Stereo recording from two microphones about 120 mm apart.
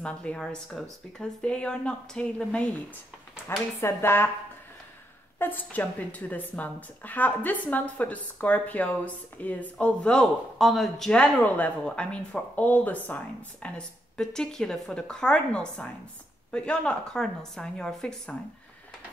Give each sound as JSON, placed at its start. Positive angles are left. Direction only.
{"t": 0.0, "sound": "a woman's voice", "side_deg": 10}
{"t": 3.4, "sound": "speech", "side_deg": 20}
{"t": 5.4, "sound": "a woman's voice", "side_deg": 15}